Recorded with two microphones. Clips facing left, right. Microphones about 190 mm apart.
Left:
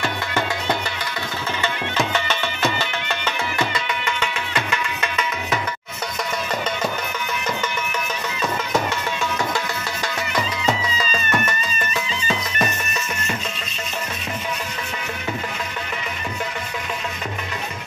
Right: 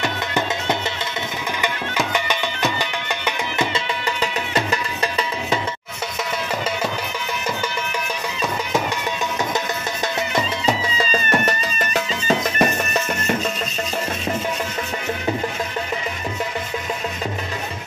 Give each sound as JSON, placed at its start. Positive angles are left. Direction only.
{"t": 0.0, "sound": "music", "side_deg": -15}
{"t": 2.1, "sound": "music", "side_deg": -15}
{"t": 3.7, "sound": "music", "side_deg": -30}
{"t": 11.0, "sound": "music", "side_deg": -35}